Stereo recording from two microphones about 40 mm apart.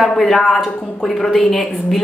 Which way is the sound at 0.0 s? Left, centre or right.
Centre.